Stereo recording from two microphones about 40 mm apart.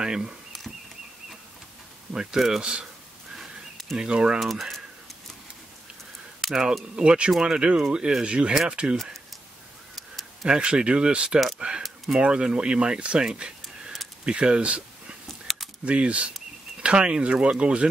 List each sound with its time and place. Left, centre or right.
0.0 s speech: centre
2.1 s speech: centre
2.6 s speech: right
4.0 s speech: right
4.4 s speech: centre
6.4 s speech: centre
7.0 s speech: right
8.9 s speech: centre
10.4 s speech: right
13.2 s a sound: right
14.2 s speech: right
15.5 s keys jangling: centre
15.8 s speech: right